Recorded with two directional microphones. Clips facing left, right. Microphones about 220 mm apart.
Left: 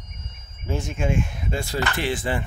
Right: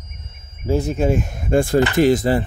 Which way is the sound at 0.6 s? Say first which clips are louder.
Right 8 dB; 35° right (ahead or behind).